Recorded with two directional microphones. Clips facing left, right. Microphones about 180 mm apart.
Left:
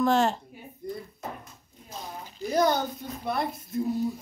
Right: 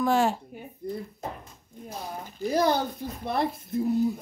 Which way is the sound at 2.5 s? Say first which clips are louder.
Even; 30° right (ahead or behind).